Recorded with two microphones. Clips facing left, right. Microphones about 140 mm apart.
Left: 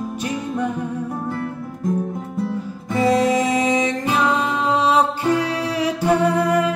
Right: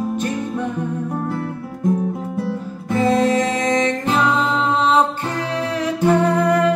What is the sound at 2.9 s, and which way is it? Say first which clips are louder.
Music: right 1 dB; 10° left (ahead or behind).